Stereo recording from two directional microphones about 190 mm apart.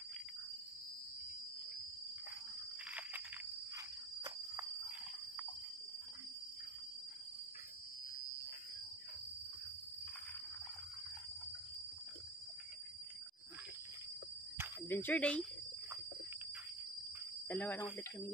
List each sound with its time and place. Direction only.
2.9 s a sound: 10° right (ahead or behind)
14.9 s speech: 10° left (ahead or behind)
17.5 s speech: 10° left (ahead or behind)